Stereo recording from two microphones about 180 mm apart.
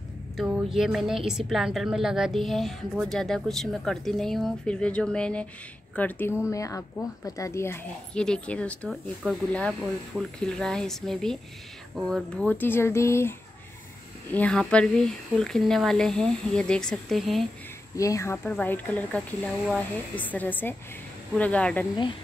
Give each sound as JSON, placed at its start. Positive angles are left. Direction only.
{"t": 0.4, "sound": "a woman's voice", "side_deg": -5}
{"t": 14.3, "sound": "a woman's voice", "side_deg": 5}
{"t": 17.9, "sound": "speech", "side_deg": 15}